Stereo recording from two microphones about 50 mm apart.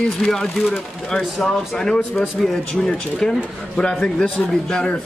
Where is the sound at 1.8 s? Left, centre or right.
Centre.